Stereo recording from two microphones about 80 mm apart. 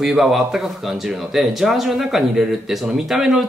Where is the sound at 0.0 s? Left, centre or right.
Centre.